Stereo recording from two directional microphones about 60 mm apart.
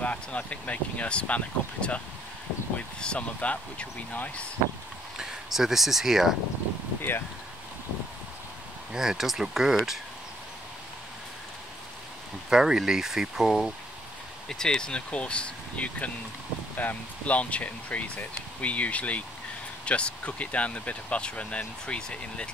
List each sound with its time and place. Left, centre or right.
0.0 s speech: left
3.0 s speech: centre
5.1 s speech: centre
7.0 s speech: left
8.9 s speech: centre
12.4 s speech: centre
14.5 s speech: centre